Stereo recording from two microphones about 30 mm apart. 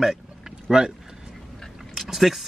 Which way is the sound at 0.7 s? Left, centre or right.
Right.